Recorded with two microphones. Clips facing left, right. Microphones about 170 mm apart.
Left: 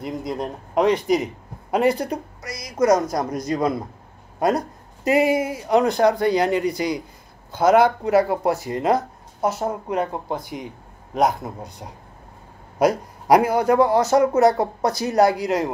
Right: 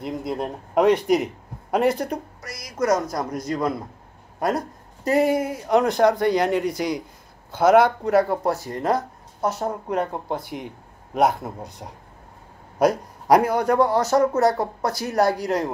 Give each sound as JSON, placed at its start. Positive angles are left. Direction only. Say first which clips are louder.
{"t": 0.0, "sound": "speech", "louder": "even", "side_deg": -5}
{"t": 2.5, "sound": "a man's voice", "louder": "left 4 dB", "side_deg": 20}